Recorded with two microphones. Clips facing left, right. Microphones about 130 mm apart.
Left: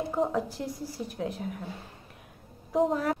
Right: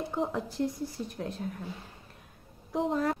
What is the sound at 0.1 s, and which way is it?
Speech, 5° left (ahead or behind).